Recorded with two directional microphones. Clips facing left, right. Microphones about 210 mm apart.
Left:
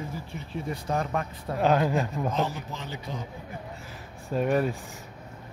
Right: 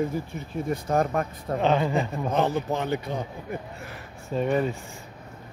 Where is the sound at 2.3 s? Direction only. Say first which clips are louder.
Right 6 dB; 60° right (ahead or behind).